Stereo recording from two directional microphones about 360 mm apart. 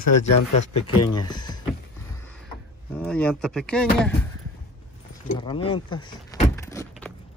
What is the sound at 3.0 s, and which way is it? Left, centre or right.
Speech, centre.